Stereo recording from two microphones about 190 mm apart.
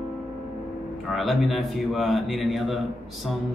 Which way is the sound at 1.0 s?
Centre (ahead or behind).